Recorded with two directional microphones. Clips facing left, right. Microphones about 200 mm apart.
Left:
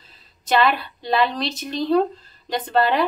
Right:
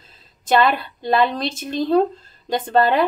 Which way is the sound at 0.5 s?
50° right (ahead or behind).